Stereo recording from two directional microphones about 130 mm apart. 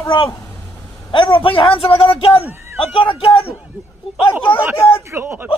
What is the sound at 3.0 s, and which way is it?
Speech, 45° left (ahead or behind).